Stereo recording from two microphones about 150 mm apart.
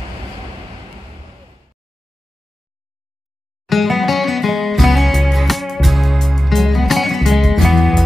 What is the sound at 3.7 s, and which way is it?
Music, centre (ahead or behind).